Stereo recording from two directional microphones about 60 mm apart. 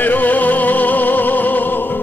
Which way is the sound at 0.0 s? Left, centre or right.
Left.